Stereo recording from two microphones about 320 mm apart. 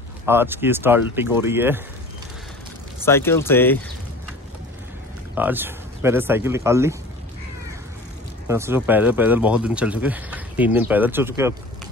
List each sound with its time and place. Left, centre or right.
0.3 s speech: centre
3.0 s speech: centre
5.3 s speech: centre
8.5 s speech: centre